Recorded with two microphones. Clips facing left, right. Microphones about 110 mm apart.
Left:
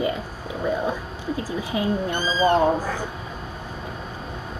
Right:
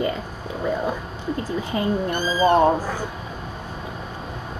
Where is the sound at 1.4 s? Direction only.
5° left (ahead or behind).